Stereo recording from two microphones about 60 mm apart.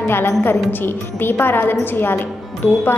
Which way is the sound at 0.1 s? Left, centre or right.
Left.